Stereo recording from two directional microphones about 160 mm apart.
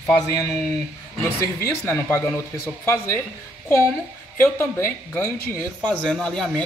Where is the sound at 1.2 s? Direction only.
15° left (ahead or behind).